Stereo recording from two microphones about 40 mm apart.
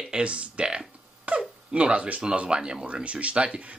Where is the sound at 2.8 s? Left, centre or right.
Right.